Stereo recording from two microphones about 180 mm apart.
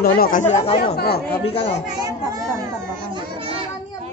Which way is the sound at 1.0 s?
60° left (ahead or behind).